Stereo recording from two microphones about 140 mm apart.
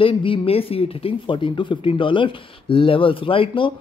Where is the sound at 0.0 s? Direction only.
40° left (ahead or behind).